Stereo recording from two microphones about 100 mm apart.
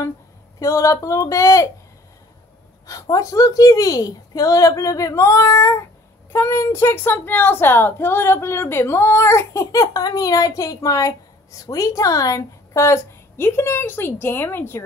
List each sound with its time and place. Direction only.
0.6 s a woman's voice: 30° left (ahead or behind)
2.9 s a woman's voice: 35° left (ahead or behind)